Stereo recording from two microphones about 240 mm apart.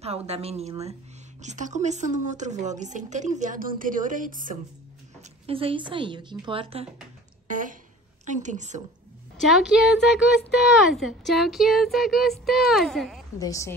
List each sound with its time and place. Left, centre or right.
0.3 s a woman's voice: right
5.5 s a woman's voice: right
7.4 s speech: right
9.4 s a woman's voice: centre
13.4 s a woman's voice: centre